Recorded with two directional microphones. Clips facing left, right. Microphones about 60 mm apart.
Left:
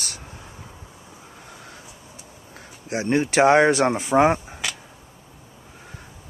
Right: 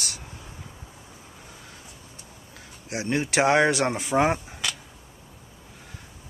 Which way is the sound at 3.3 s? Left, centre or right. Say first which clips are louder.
Left 4 dB; centre.